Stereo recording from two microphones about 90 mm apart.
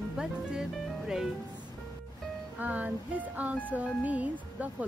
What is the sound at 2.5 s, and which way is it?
Speech, 15° right (ahead or behind).